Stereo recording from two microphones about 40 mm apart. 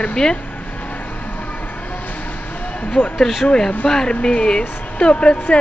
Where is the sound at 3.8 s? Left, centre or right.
Centre.